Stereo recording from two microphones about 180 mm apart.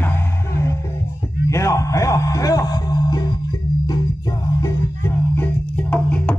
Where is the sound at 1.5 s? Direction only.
15° left (ahead or behind).